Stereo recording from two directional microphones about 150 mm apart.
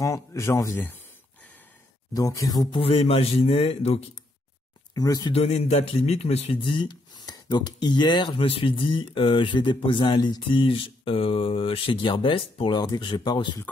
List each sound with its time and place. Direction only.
0.0 s speech: 20° left (ahead or behind)
2.1 s speech: 25° left (ahead or behind)
2.8 s speech: 40° left (ahead or behind)
4.9 s speech: 25° left (ahead or behind)
5.3 s speech: 45° left (ahead or behind)